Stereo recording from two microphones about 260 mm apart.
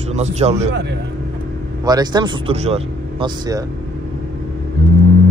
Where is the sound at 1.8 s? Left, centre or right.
Centre.